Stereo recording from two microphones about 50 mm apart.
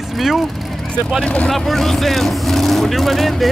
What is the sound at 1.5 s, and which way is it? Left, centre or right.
Speech, centre.